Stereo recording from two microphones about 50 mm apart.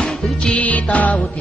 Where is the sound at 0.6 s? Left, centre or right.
Left.